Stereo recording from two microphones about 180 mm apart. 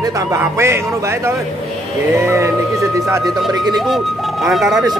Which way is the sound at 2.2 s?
15° right (ahead or behind).